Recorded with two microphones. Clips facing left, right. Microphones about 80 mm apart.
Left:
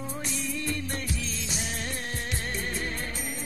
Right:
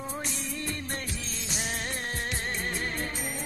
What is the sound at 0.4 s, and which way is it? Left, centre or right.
Music, right.